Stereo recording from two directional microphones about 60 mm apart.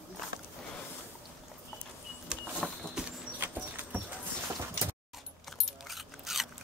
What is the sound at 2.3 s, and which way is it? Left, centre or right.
Vehicle, centre.